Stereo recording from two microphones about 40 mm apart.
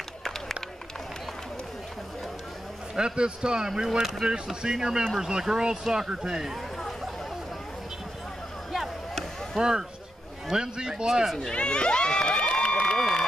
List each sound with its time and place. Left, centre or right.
0.2 s run: centre
3.0 s speech: right
8.7 s a sound: centre
9.6 s speech: centre
11.4 s crowd: left